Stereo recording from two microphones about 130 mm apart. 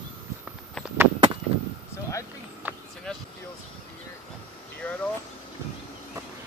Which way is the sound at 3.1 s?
5° left (ahead or behind).